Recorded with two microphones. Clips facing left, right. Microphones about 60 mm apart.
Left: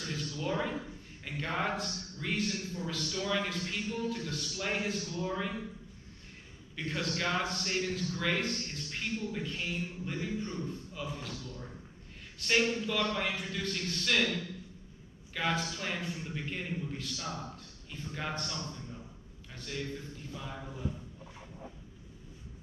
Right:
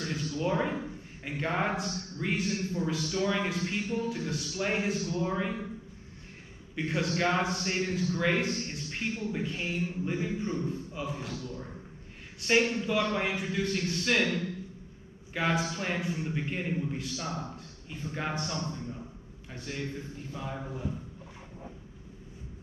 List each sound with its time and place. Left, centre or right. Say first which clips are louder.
0.1 s a sound: right 4 dB; right
1.3 s a man's voice: right 3 dB; right
6.7 s a man's voice: right 5 dB; right